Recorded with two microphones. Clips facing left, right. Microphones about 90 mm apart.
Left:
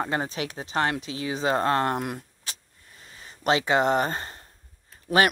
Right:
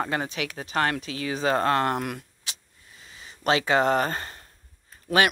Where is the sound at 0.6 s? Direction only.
20° left (ahead or behind).